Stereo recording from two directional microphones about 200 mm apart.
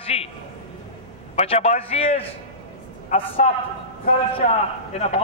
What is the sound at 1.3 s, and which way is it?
A man's voice, 30° left (ahead or behind).